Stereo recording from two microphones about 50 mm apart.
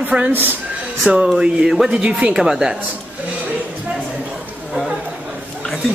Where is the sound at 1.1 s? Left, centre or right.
Centre.